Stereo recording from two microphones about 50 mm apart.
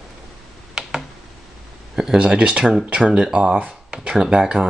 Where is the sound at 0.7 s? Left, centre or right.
Centre.